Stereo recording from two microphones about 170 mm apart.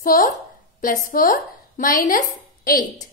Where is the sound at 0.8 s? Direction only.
50° left (ahead or behind).